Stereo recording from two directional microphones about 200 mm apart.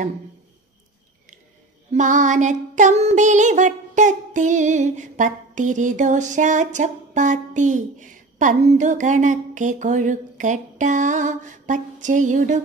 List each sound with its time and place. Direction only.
1.9 s child singing: 40° right (ahead or behind)